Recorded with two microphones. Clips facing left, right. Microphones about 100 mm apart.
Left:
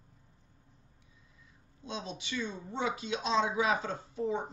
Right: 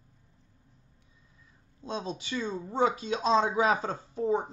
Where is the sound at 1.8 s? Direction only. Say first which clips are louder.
Right 5 dB; 40° right (ahead or behind).